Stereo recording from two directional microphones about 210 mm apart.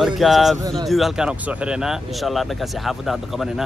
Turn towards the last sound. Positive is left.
turn(degrees=0)  # may be behind; listen again after turning